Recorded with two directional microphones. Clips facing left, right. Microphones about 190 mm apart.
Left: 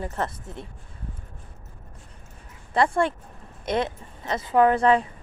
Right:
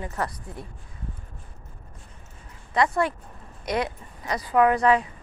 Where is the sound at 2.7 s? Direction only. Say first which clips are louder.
Left 1 dB; 30° left (ahead or behind).